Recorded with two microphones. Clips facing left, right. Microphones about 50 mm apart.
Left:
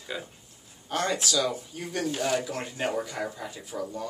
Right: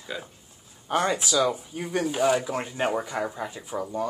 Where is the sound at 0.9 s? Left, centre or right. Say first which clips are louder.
Right 3 dB; centre.